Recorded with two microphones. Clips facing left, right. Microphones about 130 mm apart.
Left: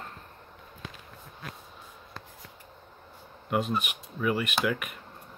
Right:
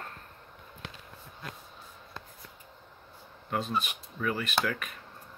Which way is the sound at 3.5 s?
15° left (ahead or behind).